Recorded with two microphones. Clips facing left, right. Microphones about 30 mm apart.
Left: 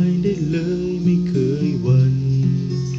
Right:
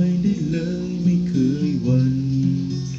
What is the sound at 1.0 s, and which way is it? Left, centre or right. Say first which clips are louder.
Music: right 2 dB; left.